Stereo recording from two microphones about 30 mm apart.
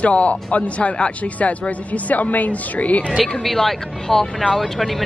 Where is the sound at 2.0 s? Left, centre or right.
Left.